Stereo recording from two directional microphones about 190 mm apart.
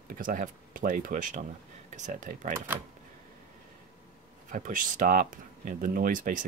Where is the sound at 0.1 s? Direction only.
45° right (ahead or behind).